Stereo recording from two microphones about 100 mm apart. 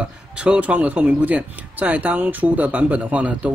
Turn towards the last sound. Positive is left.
turn(degrees=-15)  # may be behind; listen again after turning